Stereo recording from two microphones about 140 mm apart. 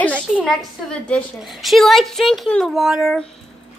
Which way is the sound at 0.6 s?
5° left (ahead or behind).